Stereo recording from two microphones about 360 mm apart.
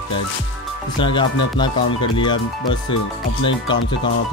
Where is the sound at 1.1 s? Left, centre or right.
Centre.